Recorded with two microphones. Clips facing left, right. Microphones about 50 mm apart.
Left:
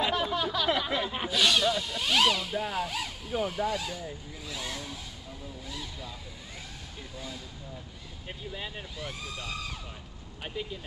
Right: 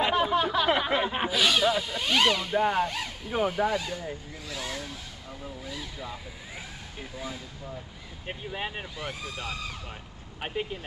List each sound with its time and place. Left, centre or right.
0.0 s a sound: right
1.3 s speech: centre
4.5 s vehicle: centre
7.2 s speech: centre
8.3 s speech: right
8.9 s speech: centre
10.4 s speech: right